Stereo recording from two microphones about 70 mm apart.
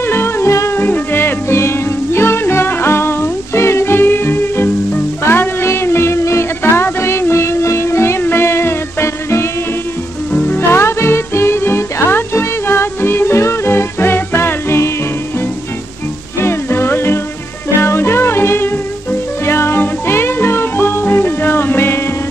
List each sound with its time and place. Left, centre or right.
0.0 s music: left
10.3 s music: left
10.7 s music: left
16.3 s music: left